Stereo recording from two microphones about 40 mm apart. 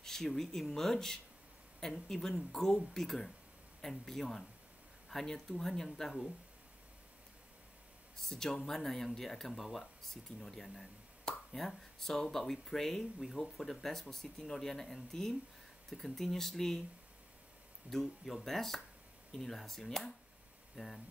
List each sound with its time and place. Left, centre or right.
0.0 s speech: centre
0.9 s speech: centre
8.2 s speech: centre
17.8 s speech: centre